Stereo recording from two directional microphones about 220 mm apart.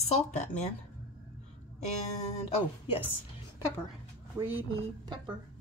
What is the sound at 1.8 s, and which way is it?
Speech, 30° left (ahead or behind).